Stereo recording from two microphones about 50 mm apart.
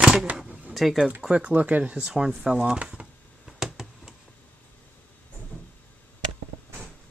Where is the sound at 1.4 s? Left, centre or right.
Right.